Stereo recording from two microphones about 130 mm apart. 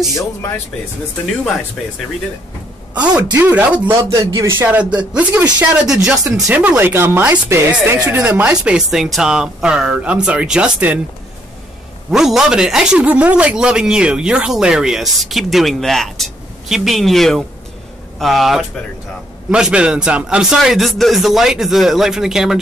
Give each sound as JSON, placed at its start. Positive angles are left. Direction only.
{"t": 0.1, "sound": "speech", "side_deg": 25}
{"t": 2.9, "sound": "a woman's voice", "side_deg": -10}
{"t": 4.1, "sound": "speech", "side_deg": -25}
{"t": 12.1, "sound": "a man's voice", "side_deg": -5}